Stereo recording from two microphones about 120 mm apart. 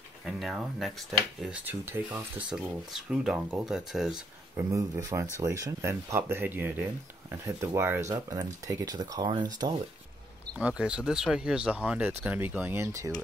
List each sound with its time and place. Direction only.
0.2 s speech: 5° right (ahead or behind)
1.7 s speech: 20° right (ahead or behind)
4.6 s speech: 25° right (ahead or behind)
10.6 s speech: 10° right (ahead or behind); by 13.1 s 25° right (ahead or behind)